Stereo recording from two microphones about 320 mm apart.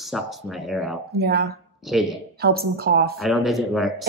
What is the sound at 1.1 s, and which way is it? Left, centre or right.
Speech, right.